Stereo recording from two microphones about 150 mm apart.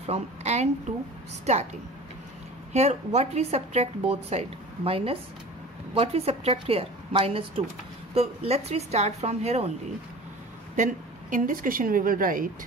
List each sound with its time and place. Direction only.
0.0 s a woman's voice: 45° right (ahead or behind)
2.7 s a woman's voice: 45° right (ahead or behind)
10.8 s a woman's voice: 60° right (ahead or behind)